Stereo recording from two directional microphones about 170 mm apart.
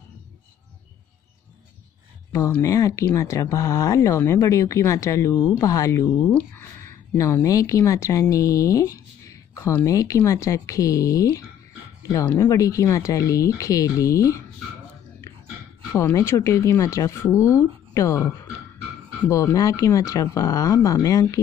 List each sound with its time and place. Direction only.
2.6 s speech: 20° left (ahead or behind)
6.5 s a sound: 15° left (ahead or behind)
7.2 s speech: 20° left (ahead or behind)
15.9 s speech: 15° left (ahead or behind)